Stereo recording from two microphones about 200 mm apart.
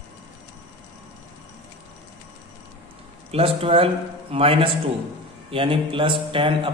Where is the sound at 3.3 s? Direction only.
30° right (ahead or behind).